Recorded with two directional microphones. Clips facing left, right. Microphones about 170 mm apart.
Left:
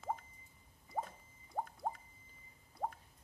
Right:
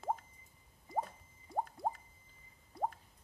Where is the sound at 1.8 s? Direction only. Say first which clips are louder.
Right 3 dB; 40° right (ahead or behind).